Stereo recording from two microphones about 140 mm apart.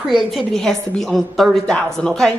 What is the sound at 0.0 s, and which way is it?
Speech, centre (ahead or behind).